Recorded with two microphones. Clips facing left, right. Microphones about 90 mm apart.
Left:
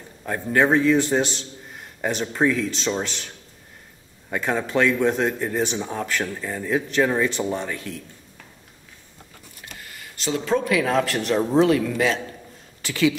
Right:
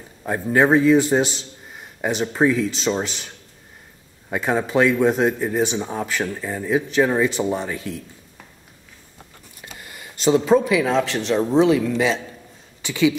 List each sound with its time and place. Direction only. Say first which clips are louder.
0.2 s speech: right 2 dB; 15° right (ahead or behind)
4.3 s speech: right 3 dB; 5° right (ahead or behind)
9.8 s a sound: right 9 dB; 20° right (ahead or behind)
10.5 s speech: right 1 dB; 10° right (ahead or behind)
10.9 s a man's voice: right 1 dB; 5° left (ahead or behind)